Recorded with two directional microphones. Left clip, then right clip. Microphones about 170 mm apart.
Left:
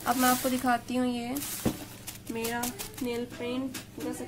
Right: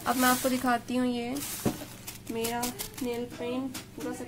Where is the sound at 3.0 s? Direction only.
5° left (ahead or behind).